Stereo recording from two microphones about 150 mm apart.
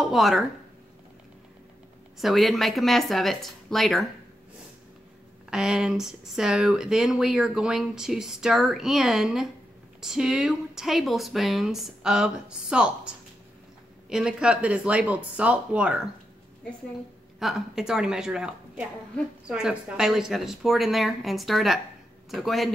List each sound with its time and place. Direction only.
0.0 s speech: centre (ahead or behind)
2.1 s speech: centre (ahead or behind)
5.5 s speech: 5° right (ahead or behind)
17.4 s speech: centre (ahead or behind)